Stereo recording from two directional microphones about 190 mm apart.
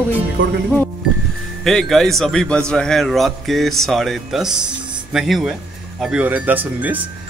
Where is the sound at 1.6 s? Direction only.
Centre (ahead or behind).